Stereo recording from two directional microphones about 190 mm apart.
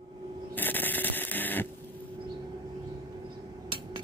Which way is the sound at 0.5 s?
10° left (ahead or behind).